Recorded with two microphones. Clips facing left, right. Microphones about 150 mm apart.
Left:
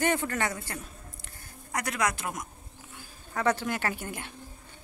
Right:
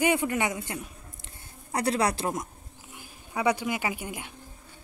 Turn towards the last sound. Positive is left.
turn(degrees=-10)  # may be behind; listen again after turning